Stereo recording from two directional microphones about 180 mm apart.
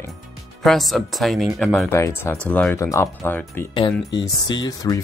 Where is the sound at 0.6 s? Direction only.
Centre (ahead or behind).